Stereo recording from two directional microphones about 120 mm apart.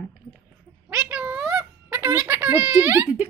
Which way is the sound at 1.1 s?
10° right (ahead or behind).